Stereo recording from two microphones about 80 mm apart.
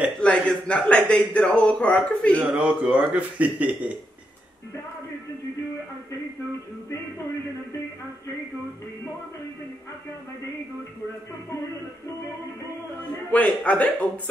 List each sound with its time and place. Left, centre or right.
0.2 s speech: centre
2.4 s speech: centre
13.3 s speech: centre